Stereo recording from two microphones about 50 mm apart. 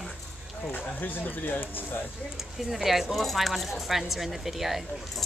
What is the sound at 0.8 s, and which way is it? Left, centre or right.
Speech, left.